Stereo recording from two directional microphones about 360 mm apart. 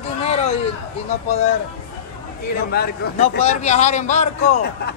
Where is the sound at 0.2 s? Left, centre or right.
Centre.